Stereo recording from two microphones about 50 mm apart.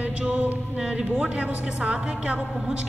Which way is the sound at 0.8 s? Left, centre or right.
Centre.